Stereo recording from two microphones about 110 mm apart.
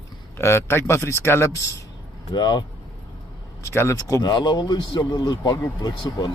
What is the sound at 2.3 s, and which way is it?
Speech, 40° left (ahead or behind).